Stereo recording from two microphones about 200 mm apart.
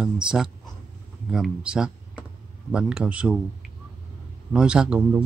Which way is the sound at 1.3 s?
5° right (ahead or behind).